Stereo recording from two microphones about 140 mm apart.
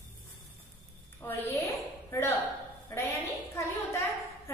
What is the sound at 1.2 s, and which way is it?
A woman's voice, 15° left (ahead or behind).